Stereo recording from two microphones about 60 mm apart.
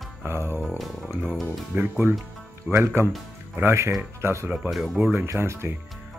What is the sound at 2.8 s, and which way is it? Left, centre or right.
Speech, right.